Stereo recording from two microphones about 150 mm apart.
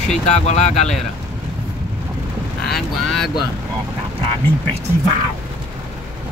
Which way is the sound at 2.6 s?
5° left (ahead or behind).